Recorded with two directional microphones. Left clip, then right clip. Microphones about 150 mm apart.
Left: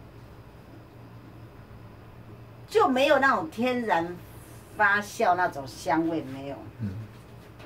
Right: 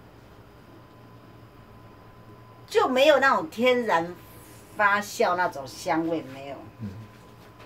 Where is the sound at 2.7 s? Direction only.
40° right (ahead or behind).